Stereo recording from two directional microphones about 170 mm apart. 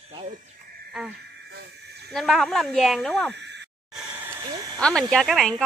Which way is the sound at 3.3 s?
90° right.